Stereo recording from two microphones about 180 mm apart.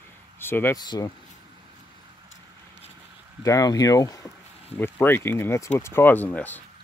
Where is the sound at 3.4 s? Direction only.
20° left (ahead or behind).